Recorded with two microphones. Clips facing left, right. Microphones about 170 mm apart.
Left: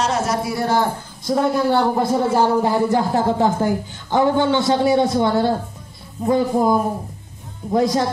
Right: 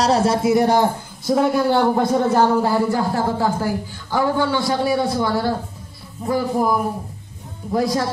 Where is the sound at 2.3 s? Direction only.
20° left (ahead or behind).